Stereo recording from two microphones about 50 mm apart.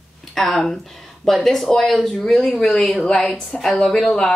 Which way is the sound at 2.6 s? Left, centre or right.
Centre.